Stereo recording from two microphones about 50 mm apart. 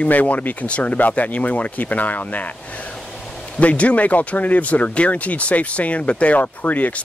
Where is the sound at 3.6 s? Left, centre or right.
Left.